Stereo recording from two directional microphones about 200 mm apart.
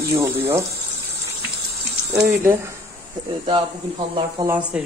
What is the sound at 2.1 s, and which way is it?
Speech, 10° right (ahead or behind).